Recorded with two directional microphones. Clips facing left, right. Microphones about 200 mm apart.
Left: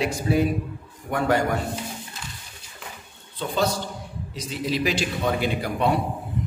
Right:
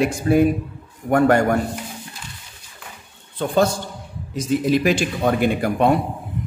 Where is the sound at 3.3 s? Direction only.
50° right (ahead or behind).